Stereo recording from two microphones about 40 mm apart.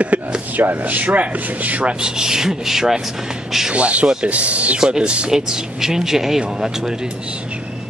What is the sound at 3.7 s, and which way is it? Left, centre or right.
Speech, right.